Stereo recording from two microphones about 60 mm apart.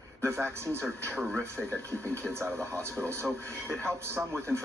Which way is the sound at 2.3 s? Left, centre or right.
Right.